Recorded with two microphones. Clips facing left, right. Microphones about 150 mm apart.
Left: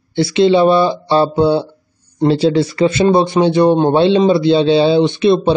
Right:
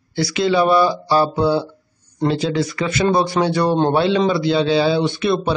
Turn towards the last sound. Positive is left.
turn(degrees=25)  # may be behind; listen again after turning